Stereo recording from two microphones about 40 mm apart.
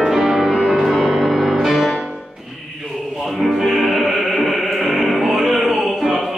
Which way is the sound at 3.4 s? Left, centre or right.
Centre.